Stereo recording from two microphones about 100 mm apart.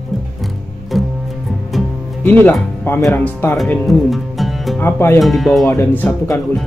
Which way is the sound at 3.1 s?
20° left (ahead or behind).